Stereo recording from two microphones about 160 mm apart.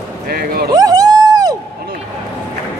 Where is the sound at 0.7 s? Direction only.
25° right (ahead or behind).